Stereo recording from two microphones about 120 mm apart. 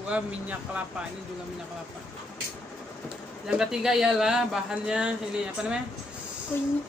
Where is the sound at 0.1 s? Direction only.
10° right (ahead or behind).